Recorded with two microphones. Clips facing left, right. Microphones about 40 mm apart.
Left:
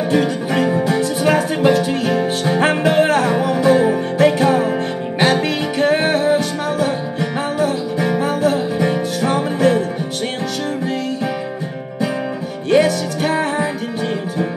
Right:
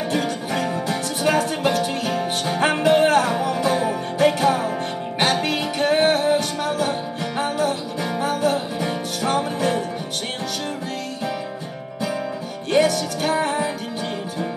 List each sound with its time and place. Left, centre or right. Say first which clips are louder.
0.1 s music: left 8 dB; centre
3.3 s music: left 6 dB; centre
4.5 s music: left 4 dB; left
5.2 s music: left 4 dB; centre
6.2 s music: left 4 dB; centre
12.7 s music: left 4 dB; centre